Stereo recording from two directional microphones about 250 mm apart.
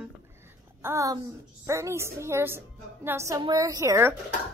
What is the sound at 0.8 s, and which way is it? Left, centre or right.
A woman's voice, centre.